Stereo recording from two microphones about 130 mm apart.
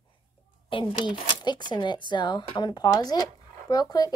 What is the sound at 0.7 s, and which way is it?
Speech, 40° left (ahead or behind).